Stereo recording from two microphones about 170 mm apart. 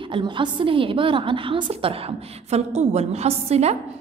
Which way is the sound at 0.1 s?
30° right (ahead or behind).